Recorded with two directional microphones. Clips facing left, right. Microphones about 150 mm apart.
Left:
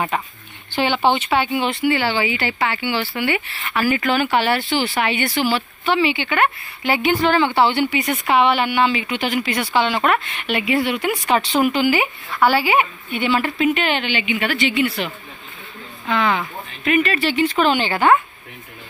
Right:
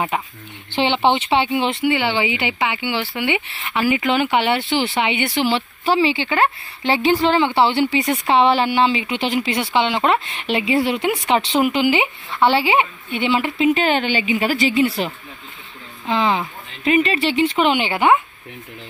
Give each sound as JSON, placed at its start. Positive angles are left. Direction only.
{"t": 0.1, "sound": "a woman's voice", "side_deg": -15}
{"t": 13.8, "sound": "a woman's voice", "side_deg": -40}